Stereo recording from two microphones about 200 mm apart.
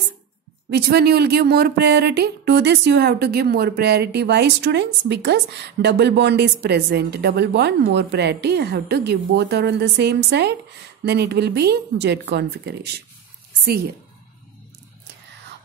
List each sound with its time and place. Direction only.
0.7 s speech: 55° right (ahead or behind)